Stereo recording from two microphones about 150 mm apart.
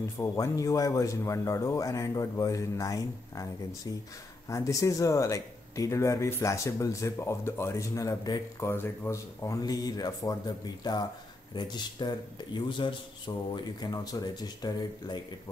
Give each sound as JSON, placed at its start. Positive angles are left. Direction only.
{"t": 0.2, "sound": "speech", "side_deg": 20}